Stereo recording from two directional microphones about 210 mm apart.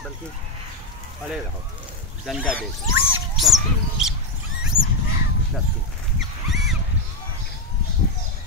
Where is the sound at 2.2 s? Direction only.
5° left (ahead or behind).